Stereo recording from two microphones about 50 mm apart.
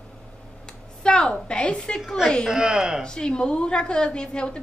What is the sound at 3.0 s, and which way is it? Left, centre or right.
A woman's voice, centre.